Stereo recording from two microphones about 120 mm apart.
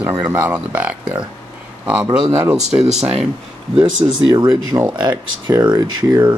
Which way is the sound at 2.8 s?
65° right (ahead or behind).